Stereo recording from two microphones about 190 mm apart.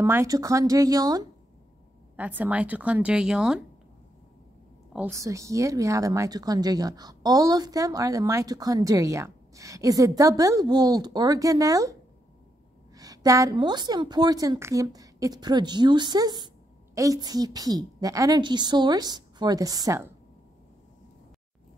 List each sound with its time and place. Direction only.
0.0 s speech: 15° right (ahead or behind)
2.1 s speech: 10° right (ahead or behind)
4.9 s speech: 10° right (ahead or behind)
12.9 s a woman's voice: 20° right (ahead or behind)